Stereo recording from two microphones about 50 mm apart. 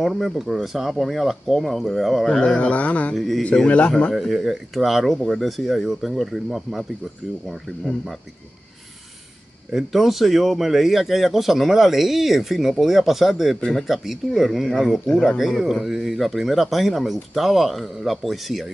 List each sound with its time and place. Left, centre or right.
0.0 s speech: centre
2.2 s speech: centre
2.5 s speech: left
3.2 s speech: centre
3.6 s speech: left
4.1 s speech: centre
9.7 s speech: centre
15.2 s speech: centre